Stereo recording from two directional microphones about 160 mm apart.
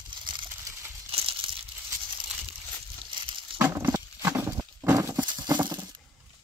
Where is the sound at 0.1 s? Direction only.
30° right (ahead or behind).